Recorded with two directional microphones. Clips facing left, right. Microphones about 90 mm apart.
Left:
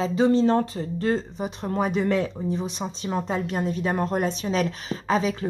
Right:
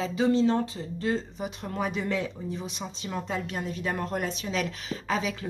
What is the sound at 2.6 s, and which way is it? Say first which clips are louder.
Speech: left 6 dB; 35° left (ahead or behind).